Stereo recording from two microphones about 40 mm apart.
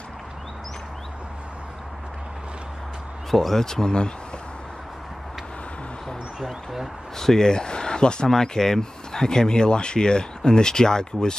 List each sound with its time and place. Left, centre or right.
3.3 s speech: centre
7.2 s speech: centre